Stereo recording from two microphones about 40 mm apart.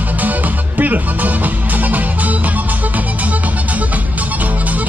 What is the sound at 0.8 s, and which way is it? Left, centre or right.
Speech, right.